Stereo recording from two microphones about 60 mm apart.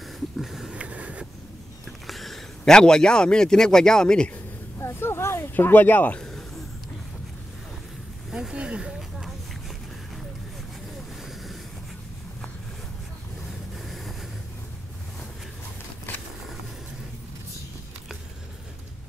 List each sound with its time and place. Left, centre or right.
0.4 s a sound: centre
0.7 s vehicle: right
2.0 s a man's voice: centre
4.7 s a sound: left
8.3 s vehicle: centre
13.5 s vehicle: centre